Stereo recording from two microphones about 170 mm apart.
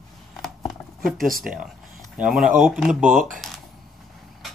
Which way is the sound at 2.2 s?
Centre (ahead or behind).